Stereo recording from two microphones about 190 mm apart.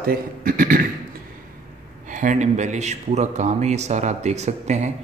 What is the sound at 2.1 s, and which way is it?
Speech, 40° right (ahead or behind).